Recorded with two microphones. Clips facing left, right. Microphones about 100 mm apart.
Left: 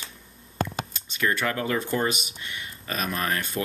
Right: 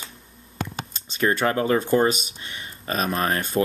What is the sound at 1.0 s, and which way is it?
Speech, 30° right (ahead or behind).